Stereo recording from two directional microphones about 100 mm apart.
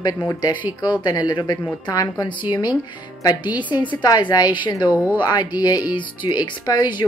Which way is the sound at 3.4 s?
15° right (ahead or behind).